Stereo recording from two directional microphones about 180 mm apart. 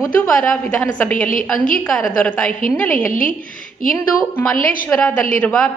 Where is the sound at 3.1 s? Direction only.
50° left (ahead or behind).